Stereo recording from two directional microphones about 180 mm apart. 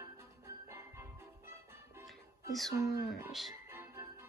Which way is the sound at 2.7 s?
15° right (ahead or behind).